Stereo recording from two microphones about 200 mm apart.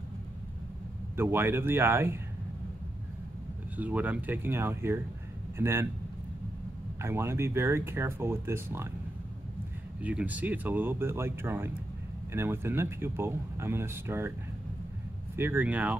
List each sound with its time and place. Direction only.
1.1 s speech: 10° right (ahead or behind)
3.7 s speech: 10° right (ahead or behind)
7.0 s speech: 10° right (ahead or behind)
10.0 s speech: 5° right (ahead or behind)
15.3 s speech: 10° right (ahead or behind)